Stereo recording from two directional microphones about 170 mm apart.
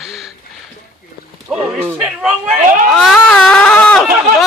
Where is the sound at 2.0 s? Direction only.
5° right (ahead or behind).